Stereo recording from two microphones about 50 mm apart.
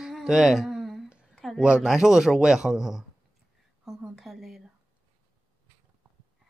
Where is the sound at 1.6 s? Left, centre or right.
Centre.